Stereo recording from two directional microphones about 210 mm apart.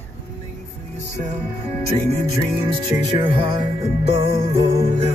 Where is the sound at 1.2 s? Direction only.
30° right (ahead or behind).